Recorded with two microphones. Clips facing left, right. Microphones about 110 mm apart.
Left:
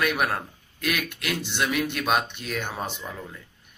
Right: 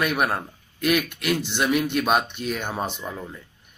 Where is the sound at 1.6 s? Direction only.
20° right (ahead or behind).